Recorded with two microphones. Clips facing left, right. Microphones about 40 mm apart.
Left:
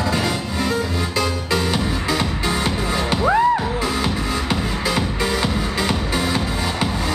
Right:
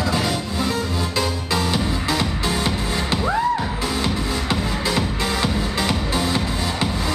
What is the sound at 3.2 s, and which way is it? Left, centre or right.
Music, centre.